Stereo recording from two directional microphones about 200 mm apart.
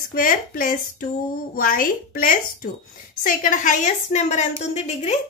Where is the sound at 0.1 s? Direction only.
45° left (ahead or behind).